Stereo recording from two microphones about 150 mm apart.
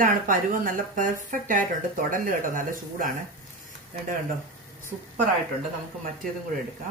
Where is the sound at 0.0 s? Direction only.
65° right (ahead or behind).